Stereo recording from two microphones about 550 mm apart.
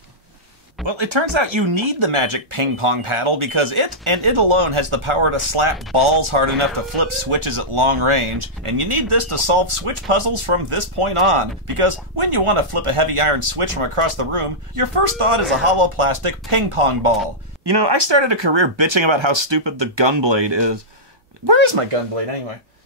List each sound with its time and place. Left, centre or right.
0.8 s speech: right
17.6 s speech: right